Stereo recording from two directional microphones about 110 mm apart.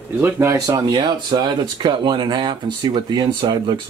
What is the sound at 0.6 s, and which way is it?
Speech, 35° right (ahead or behind).